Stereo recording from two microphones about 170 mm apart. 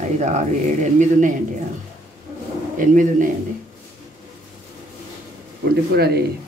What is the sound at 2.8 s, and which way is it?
Speech, 50° right (ahead or behind).